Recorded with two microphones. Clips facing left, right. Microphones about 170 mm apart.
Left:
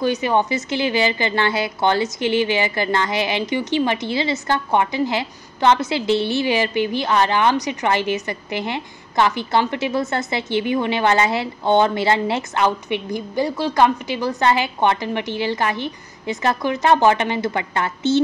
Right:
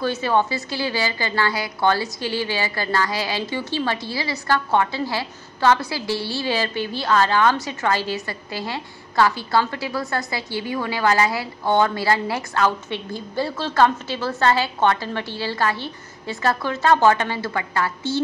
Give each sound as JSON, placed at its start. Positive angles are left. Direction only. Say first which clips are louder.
{"t": 0.0, "sound": "a woman's voice", "louder": "left 2 dB", "side_deg": 15}